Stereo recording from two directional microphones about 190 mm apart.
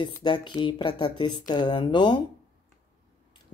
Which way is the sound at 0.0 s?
25° left (ahead or behind).